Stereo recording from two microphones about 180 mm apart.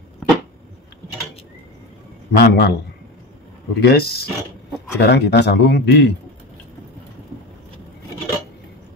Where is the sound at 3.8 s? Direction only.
60° left (ahead or behind).